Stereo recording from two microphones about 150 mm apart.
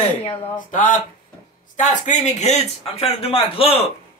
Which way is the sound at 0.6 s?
60° left (ahead or behind).